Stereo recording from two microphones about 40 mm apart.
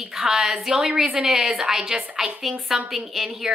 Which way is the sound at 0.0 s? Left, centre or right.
Centre.